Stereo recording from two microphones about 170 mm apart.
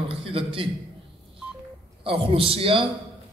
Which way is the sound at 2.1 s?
35° right (ahead or behind).